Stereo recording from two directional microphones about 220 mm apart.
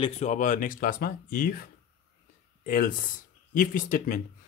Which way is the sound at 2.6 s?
40° left (ahead or behind).